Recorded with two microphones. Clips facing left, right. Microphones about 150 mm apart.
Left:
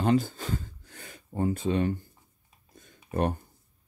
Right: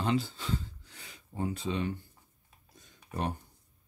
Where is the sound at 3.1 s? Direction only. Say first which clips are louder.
Left 7 dB; 55° left (ahead or behind).